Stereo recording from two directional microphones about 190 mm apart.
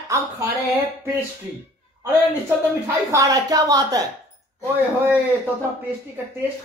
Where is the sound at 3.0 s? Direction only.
20° right (ahead or behind).